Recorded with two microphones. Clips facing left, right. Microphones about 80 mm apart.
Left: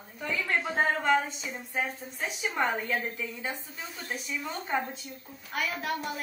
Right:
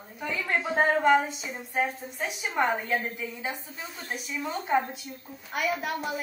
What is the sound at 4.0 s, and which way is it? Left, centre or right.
A woman's voice, centre.